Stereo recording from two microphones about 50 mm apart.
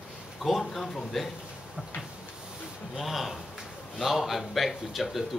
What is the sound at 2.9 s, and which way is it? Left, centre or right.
Speech, centre.